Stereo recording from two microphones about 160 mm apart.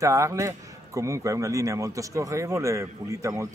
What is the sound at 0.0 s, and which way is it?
A man's voice, 20° right (ahead or behind).